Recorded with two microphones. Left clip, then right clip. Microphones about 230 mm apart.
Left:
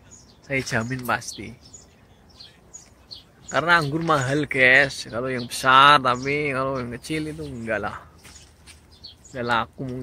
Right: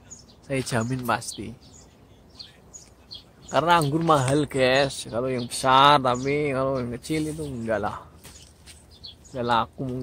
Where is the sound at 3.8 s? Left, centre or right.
Centre.